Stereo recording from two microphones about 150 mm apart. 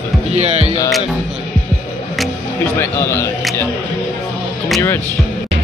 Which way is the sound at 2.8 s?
15° left (ahead or behind).